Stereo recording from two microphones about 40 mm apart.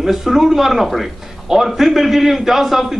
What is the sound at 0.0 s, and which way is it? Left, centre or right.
A man's voice, centre.